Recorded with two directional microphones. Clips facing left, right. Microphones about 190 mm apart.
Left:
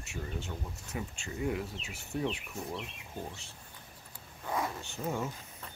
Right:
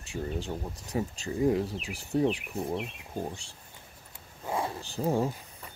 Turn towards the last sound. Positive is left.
turn(degrees=-35)  # may be behind; listen again after turning